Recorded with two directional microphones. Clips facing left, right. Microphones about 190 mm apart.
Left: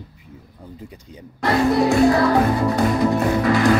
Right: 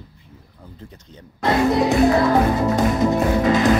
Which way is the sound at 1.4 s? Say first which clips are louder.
Even; 20° right (ahead or behind).